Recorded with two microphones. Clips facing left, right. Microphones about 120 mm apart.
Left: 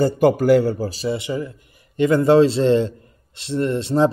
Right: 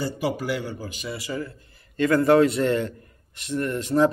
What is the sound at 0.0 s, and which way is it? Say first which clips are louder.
A man's voice: left 11 dB; 50° left (ahead or behind).